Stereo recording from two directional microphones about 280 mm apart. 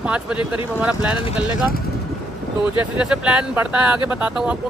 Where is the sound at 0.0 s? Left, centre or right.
Centre.